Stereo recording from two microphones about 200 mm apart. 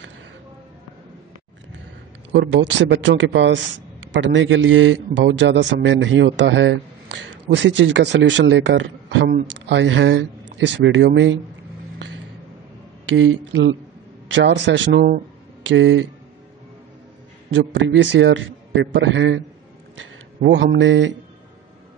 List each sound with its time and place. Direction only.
2.3 s a man's voice: 65° right (ahead or behind)
13.1 s a man's voice: 70° right (ahead or behind); by 15.2 s 50° right (ahead or behind)
15.6 s speech: 70° right (ahead or behind)
17.5 s a man's voice: 65° right (ahead or behind)